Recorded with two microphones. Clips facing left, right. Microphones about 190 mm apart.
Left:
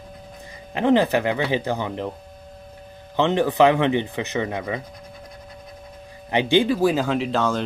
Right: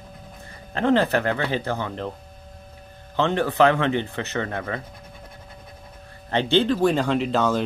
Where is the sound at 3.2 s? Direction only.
15° left (ahead or behind).